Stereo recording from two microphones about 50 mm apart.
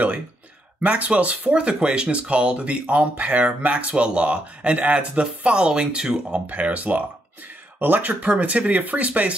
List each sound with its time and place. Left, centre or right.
0.7 s speech: right
6.4 s speech: right